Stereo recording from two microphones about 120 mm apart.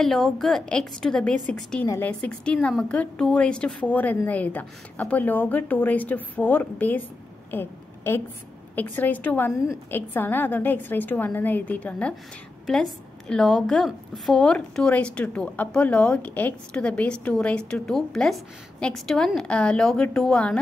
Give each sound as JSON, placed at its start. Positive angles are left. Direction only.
{"t": 0.0, "sound": "a woman's voice", "side_deg": 0}
{"t": 7.5, "sound": "a sound", "side_deg": 20}
{"t": 8.7, "sound": "a woman's voice", "side_deg": 15}